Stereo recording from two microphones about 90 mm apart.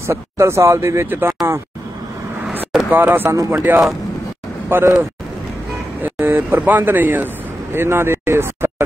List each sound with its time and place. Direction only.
0.0 s speech: 30° right (ahead or behind)
2.9 s speech: 20° right (ahead or behind)
6.0 s speech: 20° right (ahead or behind)